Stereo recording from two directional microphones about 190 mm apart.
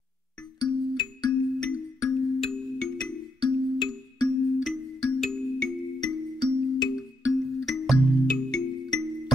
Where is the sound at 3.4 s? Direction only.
20° left (ahead or behind).